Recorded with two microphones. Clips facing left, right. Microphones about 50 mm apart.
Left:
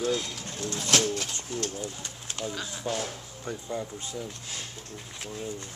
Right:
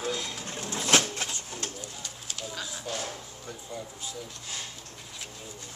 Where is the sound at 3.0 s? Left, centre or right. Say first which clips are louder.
Left 2 dB; left.